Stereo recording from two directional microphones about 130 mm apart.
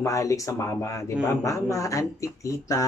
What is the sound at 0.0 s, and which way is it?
Speech, 25° left (ahead or behind).